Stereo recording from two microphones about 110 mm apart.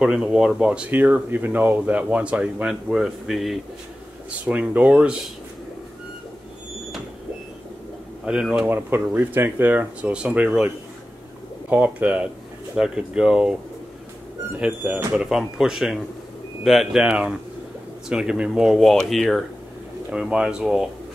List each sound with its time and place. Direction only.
0.0 s speech: 10° right (ahead or behind)
4.3 s speech: 15° right (ahead or behind)
8.3 s speech: 10° right (ahead or behind)
8.6 s speech: 20° right (ahead or behind)
11.7 s speech: 15° right (ahead or behind)
14.6 s speech: 15° right (ahead or behind)
15.1 s speech: 5° right (ahead or behind)